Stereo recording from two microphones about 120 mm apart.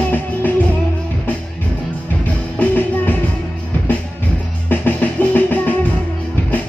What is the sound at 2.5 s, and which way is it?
Music, 15° left (ahead or behind).